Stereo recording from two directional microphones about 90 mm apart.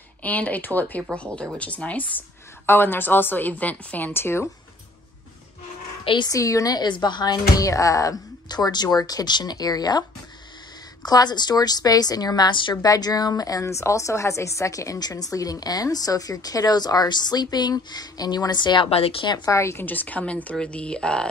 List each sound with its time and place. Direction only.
0.2 s a woman's voice: 15° left (ahead or behind)
6.2 s a woman's voice: 40° left (ahead or behind)
11.1 s a woman's voice: 50° left (ahead or behind)
12.8 s a woman's voice: 45° left (ahead or behind); by 19.3 s 85° left
19.3 s a woman's voice: 35° left (ahead or behind); by 21.3 s 10° left (ahead or behind)